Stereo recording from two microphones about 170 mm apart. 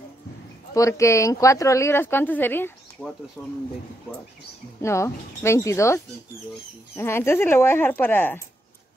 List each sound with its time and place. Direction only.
0.7 s speech: 20° left (ahead or behind); by 3.5 s centre (ahead or behind)
4.8 s speech: 15° left (ahead or behind)
7.0 s speech: 15° left (ahead or behind)